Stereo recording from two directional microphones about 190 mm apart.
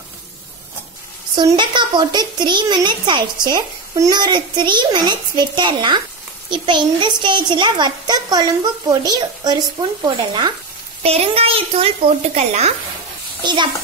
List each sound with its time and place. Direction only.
1.3 s a child's voice: 25° right (ahead or behind)
11.0 s a child's voice: 30° right (ahead or behind)